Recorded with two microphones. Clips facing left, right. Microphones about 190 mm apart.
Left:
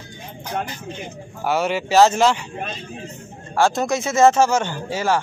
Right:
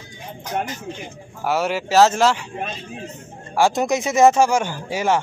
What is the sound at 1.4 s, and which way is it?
Speech, 5° right (ahead or behind).